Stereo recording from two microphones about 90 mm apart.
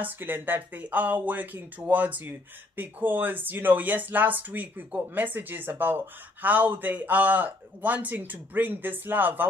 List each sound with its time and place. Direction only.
0.0 s speech: 20° right (ahead or behind)